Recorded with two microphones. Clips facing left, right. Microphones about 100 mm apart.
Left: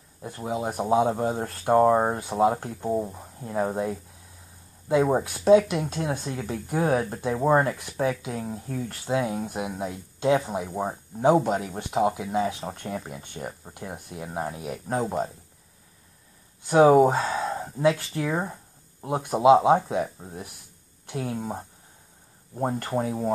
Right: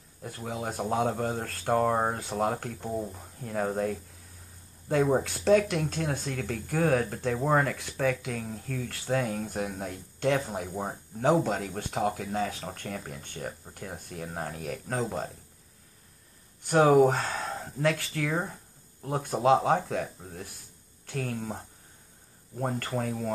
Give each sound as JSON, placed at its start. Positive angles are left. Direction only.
{"t": 0.2, "sound": "speech", "side_deg": 15}
{"t": 2.1, "sound": "speech", "side_deg": 15}
{"t": 5.4, "sound": "speech", "side_deg": 15}
{"t": 8.0, "sound": "speech", "side_deg": 15}
{"t": 11.2, "sound": "speech", "side_deg": 15}
{"t": 16.6, "sound": "speech", "side_deg": 15}
{"t": 22.6, "sound": "speech", "side_deg": 25}